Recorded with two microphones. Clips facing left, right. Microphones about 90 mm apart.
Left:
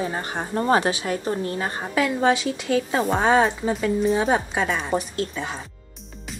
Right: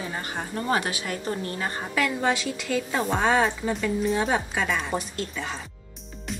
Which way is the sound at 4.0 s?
Centre (ahead or behind).